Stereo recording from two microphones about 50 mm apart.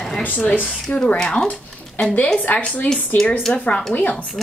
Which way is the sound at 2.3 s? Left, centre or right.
Left.